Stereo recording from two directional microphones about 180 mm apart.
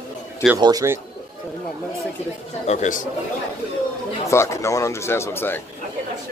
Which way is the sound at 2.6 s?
40° left (ahead or behind).